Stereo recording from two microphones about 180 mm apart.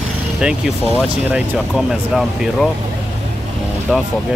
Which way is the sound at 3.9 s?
5° right (ahead or behind).